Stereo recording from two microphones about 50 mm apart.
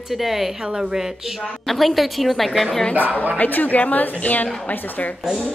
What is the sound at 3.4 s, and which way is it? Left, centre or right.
A woman's voice, left.